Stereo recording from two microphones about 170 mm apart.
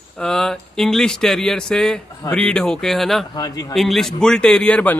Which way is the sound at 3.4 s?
20° left (ahead or behind).